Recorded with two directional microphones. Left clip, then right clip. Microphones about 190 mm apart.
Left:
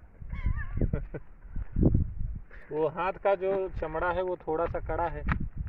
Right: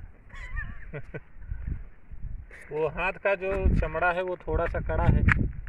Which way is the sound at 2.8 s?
15° left (ahead or behind).